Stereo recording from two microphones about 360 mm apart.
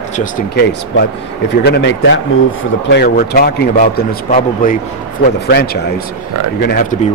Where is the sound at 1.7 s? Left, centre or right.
Left.